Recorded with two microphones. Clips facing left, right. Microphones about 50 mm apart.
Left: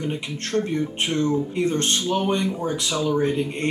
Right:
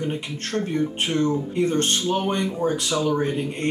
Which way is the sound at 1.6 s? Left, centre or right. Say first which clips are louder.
Right 1 dB; right.